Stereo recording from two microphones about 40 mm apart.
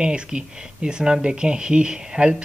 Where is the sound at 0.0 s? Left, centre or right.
Right.